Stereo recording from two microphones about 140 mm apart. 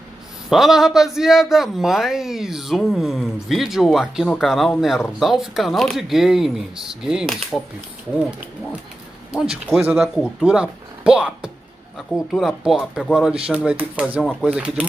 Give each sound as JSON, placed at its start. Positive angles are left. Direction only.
{"t": 0.5, "sound": "a man's voice", "side_deg": 0}
{"t": 9.3, "sound": "a man's voice", "side_deg": -5}